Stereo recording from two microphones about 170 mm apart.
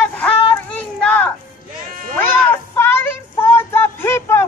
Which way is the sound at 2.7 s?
15° left (ahead or behind).